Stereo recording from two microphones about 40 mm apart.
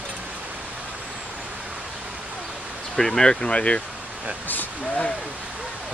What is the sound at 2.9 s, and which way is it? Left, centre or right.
Speech, centre.